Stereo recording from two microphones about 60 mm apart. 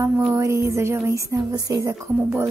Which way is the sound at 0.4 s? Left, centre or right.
Right.